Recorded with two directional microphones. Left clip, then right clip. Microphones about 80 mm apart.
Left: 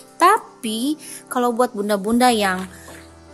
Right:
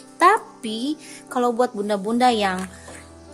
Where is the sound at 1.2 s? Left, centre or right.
Left.